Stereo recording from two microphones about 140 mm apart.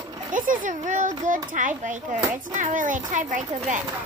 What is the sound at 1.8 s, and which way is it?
Music, 65° right (ahead or behind).